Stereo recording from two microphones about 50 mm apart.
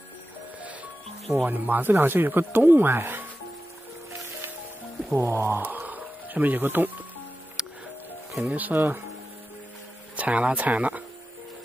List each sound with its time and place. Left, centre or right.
1.4 s speech: right
5.1 s speech: right
7.6 s music: centre
8.5 s speech: right
10.1 s speech: right